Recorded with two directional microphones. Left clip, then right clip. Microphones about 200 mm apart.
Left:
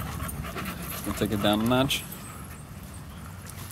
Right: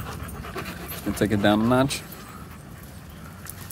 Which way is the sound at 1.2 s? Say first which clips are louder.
Right 4 dB; 25° right (ahead or behind).